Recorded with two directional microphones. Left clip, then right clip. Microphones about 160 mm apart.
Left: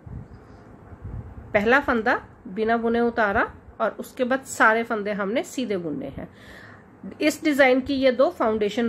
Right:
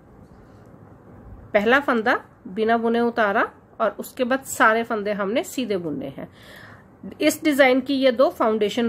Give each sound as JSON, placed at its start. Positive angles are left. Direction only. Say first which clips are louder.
{"t": 1.5, "sound": "a woman's voice", "louder": "right 1 dB", "side_deg": -20}